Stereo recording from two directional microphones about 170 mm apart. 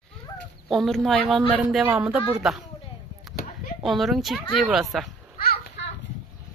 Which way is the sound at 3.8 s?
Centre (ahead or behind).